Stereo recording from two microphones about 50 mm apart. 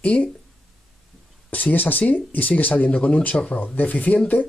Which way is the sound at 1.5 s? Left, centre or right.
Left.